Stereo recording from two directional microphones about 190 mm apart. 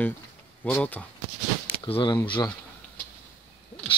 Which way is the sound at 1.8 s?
25° left (ahead or behind).